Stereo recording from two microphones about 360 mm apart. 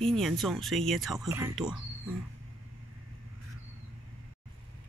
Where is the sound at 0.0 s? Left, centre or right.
Centre.